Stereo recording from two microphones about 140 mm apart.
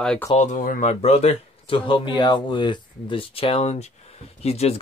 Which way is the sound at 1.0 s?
50° left (ahead or behind).